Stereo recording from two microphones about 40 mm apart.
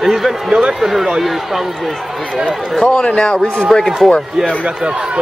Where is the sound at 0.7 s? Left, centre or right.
Centre.